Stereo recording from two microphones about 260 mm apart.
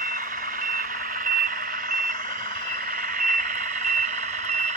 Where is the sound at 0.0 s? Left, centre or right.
Right.